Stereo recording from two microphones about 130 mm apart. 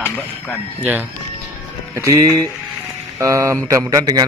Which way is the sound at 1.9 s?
25° right (ahead or behind).